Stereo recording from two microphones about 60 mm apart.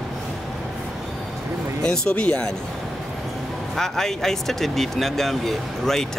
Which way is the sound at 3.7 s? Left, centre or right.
Centre.